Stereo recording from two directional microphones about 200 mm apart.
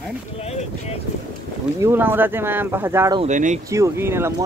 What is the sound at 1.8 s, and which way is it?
Speech, 10° right (ahead or behind).